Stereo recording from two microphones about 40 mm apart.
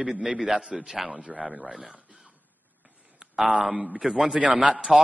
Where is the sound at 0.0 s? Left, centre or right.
Right.